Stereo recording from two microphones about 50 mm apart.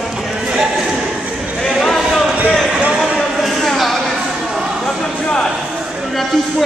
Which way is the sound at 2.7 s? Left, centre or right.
Centre.